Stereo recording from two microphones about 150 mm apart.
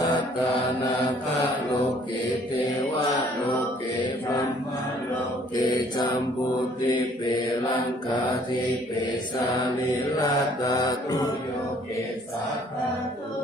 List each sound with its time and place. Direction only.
5.6 s mantra: 30° left (ahead or behind)
7.3 s mantra: 30° left (ahead or behind)
9.9 s mantra: 25° left (ahead or behind)